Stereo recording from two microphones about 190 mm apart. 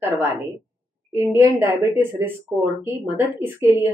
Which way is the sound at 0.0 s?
15° right (ahead or behind).